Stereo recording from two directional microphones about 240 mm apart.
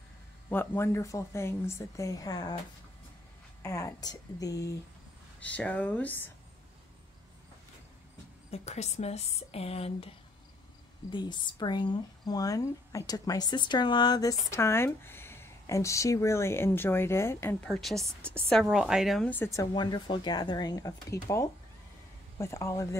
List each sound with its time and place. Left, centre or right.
0.5 s speech: centre
3.6 s speech: centre
8.5 s speech: left
11.1 s speech: centre